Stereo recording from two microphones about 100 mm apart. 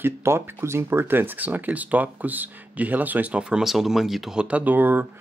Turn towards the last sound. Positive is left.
turn(degrees=-20)  # may be behind; listen again after turning